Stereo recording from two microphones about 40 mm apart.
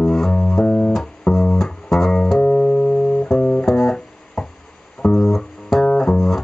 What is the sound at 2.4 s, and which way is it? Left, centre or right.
Music, left.